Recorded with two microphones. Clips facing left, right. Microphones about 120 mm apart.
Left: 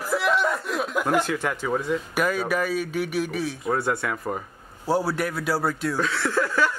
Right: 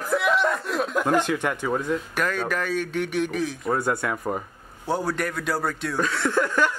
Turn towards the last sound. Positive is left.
turn(degrees=5)  # may be behind; listen again after turning